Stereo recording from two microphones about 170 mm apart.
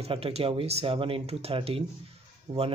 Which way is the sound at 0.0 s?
35° right (ahead or behind).